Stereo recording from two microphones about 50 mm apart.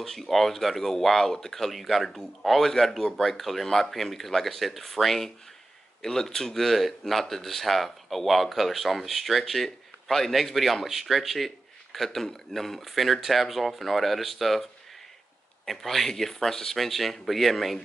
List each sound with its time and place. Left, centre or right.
0.0 s speech: centre